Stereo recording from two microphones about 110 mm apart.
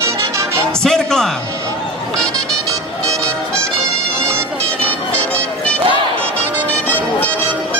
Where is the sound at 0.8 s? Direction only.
5° left (ahead or behind).